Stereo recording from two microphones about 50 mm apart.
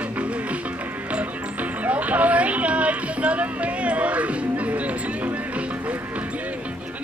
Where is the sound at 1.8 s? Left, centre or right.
Right.